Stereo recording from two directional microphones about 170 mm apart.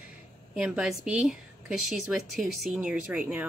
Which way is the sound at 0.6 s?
5° right (ahead or behind).